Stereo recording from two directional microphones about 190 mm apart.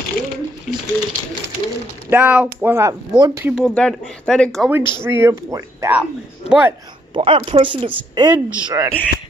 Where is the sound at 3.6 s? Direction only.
Centre (ahead or behind).